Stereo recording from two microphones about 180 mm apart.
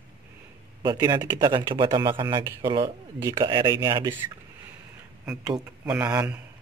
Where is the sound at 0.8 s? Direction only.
20° right (ahead or behind).